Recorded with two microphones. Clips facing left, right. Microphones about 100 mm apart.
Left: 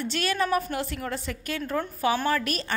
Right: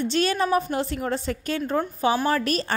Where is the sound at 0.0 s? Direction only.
30° right (ahead or behind).